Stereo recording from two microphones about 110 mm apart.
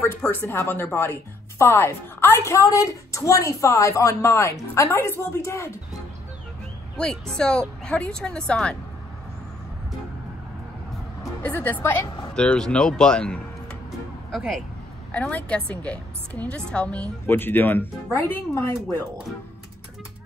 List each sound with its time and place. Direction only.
0.0 s speech: 20° left (ahead or behind)
7.3 s a woman's voice: 5° left (ahead or behind)
11.4 s a woman's voice: 15° left (ahead or behind)
12.4 s a woman's voice: 5° left (ahead or behind)
15.1 s a woman's voice: 10° left (ahead or behind)